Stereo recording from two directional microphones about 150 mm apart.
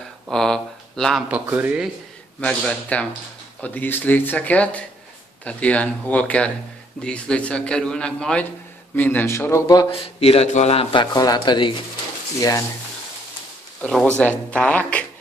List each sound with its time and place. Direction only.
0.3 s speech: 5° left (ahead or behind)
1.3 s speech: 10° right (ahead or behind)
2.4 s a man's voice: 10° left (ahead or behind)
9.8 s speech: 40° left (ahead or behind); by 12.6 s 25° left (ahead or behind)
14.1 s a man's voice: 5° left (ahead or behind)